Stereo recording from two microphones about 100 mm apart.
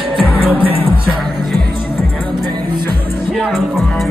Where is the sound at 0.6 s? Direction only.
70° right (ahead or behind).